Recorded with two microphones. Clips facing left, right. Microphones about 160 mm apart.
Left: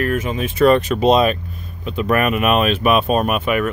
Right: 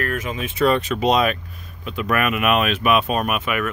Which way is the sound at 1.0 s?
30° left (ahead or behind).